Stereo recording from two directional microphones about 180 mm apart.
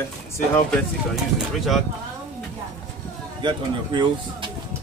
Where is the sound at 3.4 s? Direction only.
25° right (ahead or behind).